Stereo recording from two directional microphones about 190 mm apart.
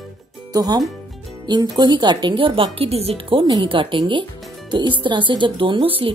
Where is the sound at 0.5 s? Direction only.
20° right (ahead or behind).